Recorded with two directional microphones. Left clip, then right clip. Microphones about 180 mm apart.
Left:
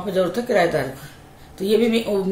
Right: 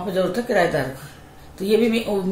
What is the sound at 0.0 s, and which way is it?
A man's voice, 15° left (ahead or behind).